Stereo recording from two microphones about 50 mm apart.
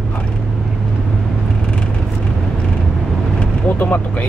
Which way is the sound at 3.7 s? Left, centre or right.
Left.